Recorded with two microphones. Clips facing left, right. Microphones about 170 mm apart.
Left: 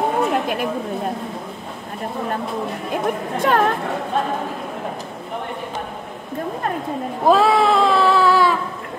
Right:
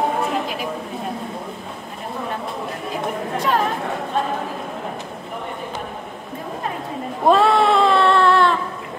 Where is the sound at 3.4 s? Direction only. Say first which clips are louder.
Left 3 dB; 60° left (ahead or behind).